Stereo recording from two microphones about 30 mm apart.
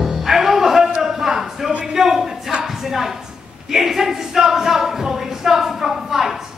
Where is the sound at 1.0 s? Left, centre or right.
Centre.